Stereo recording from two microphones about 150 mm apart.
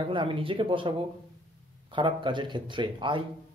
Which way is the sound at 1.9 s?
30° right (ahead or behind).